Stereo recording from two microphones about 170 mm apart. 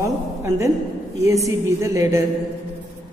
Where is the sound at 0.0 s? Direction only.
15° right (ahead or behind).